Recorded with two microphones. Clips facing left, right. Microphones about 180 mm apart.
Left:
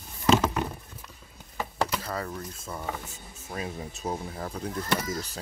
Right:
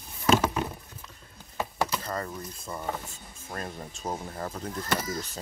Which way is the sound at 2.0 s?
Centre (ahead or behind).